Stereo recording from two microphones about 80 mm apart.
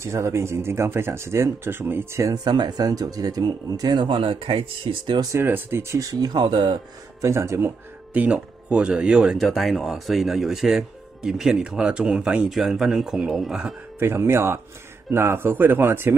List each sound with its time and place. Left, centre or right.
0.0 s speech: right
2.2 s speech: right
4.0 s speech: right
5.4 s speech: right
5.9 s speech: right
7.2 s speech: right
8.1 s speech: centre
12.4 s speech: centre
13.9 s speech: right